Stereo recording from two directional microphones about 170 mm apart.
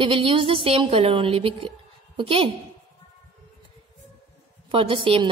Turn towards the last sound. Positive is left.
turn(degrees=-30)  # may be behind; listen again after turning